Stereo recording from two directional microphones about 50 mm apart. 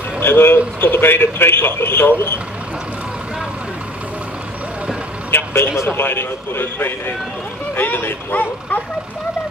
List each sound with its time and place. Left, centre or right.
0.2 s a sound: left
0.9 s speech: left
5.3 s vehicle: left
5.9 s speech: left